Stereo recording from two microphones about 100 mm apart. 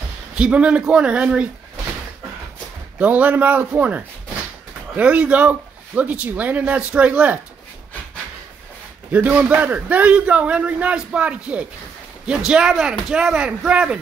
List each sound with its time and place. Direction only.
0.4 s a man's voice: 10° right (ahead or behind)
3.0 s a man's voice: 15° right (ahead or behind)
9.1 s a man's voice: 15° right (ahead or behind)